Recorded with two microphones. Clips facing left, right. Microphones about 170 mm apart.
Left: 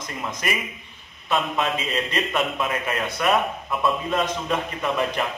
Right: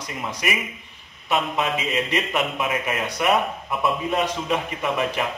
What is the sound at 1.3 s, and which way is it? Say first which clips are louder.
A man's voice: even; 10° right (ahead or behind).